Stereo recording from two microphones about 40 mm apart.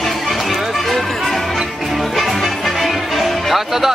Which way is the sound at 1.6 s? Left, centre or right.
Centre.